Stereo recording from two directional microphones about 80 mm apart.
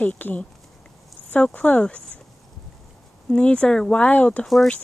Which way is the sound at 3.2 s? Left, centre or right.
Centre.